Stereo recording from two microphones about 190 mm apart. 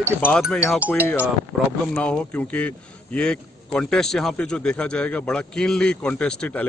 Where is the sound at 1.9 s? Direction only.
5° left (ahead or behind).